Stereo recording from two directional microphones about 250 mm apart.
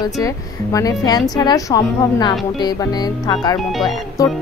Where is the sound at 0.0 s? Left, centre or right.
Centre.